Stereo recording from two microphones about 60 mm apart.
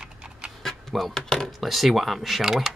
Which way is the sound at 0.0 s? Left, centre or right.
Centre.